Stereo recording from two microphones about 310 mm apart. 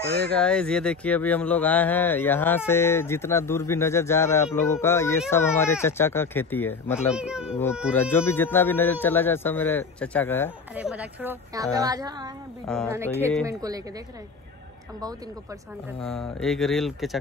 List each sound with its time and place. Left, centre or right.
0.3 s speech: centre
10.7 s a woman's voice: centre
12.6 s a woman's voice: centre
16.0 s speech: centre